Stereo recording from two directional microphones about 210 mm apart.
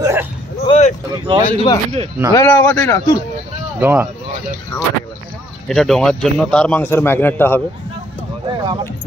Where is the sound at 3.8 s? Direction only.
10° right (ahead or behind).